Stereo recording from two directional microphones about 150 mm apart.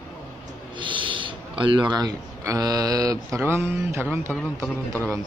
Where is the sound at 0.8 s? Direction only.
35° right (ahead or behind); by 4.3 s 15° right (ahead or behind).